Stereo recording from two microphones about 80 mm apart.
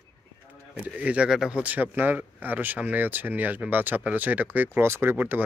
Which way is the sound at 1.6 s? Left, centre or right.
Right.